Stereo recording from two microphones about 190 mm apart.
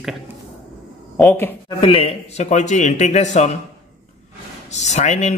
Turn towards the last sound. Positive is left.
turn(degrees=35)  # may be behind; listen again after turning